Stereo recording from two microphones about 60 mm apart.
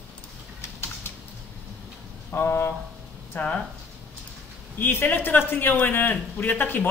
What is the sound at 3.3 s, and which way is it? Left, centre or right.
Speech, left.